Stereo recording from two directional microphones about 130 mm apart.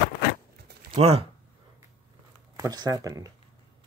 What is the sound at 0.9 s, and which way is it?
Speech, 50° right (ahead or behind).